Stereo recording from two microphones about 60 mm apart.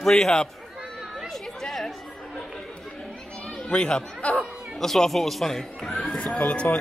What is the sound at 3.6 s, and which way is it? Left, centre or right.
A man's voice, centre.